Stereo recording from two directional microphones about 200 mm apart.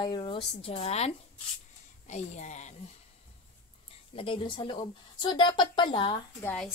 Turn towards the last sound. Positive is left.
turn(degrees=5)  # may be behind; listen again after turning